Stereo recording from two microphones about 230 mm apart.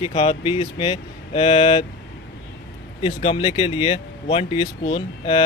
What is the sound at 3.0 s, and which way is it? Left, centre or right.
Speech, left.